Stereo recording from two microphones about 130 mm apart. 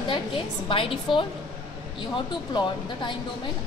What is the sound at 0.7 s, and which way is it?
Speech, 40° left (ahead or behind).